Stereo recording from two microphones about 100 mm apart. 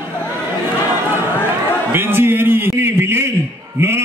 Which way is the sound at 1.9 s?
25° right (ahead or behind).